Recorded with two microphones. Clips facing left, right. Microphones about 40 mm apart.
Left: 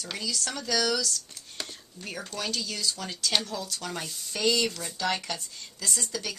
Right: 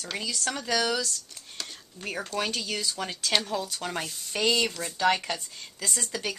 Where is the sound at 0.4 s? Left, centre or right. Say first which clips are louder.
Right 2 dB; centre.